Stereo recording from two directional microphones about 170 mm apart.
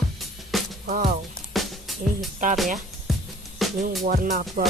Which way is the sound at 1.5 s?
Centre (ahead or behind).